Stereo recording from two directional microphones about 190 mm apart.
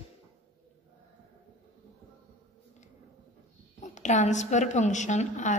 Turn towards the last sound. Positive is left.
turn(degrees=40)  # may be behind; listen again after turning